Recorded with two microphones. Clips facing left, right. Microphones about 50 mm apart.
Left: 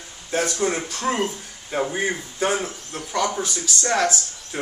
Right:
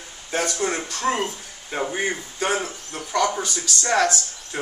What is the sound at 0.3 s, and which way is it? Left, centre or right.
Speech, centre.